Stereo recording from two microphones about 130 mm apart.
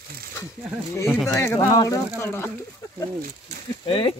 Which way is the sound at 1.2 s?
20° left (ahead or behind).